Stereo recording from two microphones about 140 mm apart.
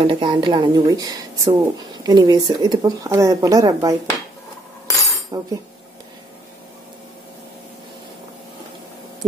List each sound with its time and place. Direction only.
0.0 s speech: 35° right (ahead or behind)
4.9 s cutlery: 20° left (ahead or behind)
5.3 s speech: 25° right (ahead or behind)